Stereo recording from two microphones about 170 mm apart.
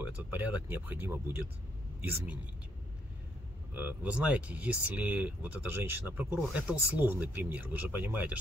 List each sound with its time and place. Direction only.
0.2 s a man's voice: 10° right (ahead or behind)
3.7 s speech: 10° right (ahead or behind)